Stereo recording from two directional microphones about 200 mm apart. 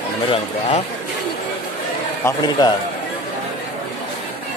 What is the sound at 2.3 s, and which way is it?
Speech, 20° left (ahead or behind).